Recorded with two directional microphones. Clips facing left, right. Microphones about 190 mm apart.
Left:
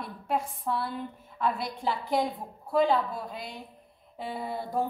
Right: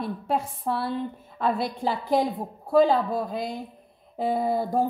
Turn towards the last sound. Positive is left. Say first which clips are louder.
# right 9 dB
turn(degrees=-40)  # may be behind; listen again after turning